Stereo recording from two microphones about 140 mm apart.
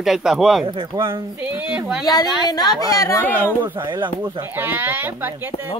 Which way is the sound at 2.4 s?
30° left (ahead or behind).